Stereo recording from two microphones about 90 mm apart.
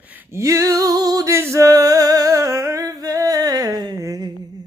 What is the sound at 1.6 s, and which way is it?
Humming, 45° right (ahead or behind).